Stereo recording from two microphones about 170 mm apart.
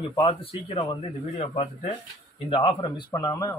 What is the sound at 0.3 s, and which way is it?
Speech, 35° left (ahead or behind).